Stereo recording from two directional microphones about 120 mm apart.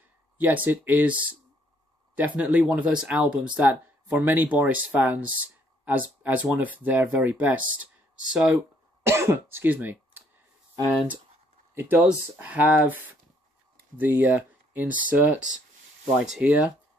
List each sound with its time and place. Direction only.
0.4 s speech: 15° right (ahead or behind)
2.1 s speech: 15° right (ahead or behind)
9.0 s speech: 20° right (ahead or behind)
11.7 s speech: 20° right (ahead or behind)